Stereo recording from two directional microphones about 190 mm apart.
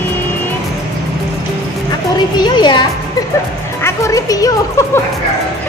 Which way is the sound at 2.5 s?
25° left (ahead or behind).